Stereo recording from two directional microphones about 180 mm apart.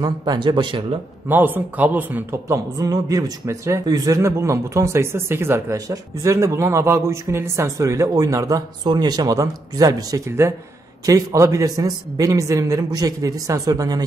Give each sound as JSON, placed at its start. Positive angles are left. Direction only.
{"t": 0.0, "sound": "a man's voice", "side_deg": -25}
{"t": 1.3, "sound": "a man's voice", "side_deg": -10}